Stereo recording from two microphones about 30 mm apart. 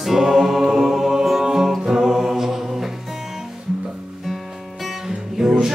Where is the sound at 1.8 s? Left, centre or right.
Centre.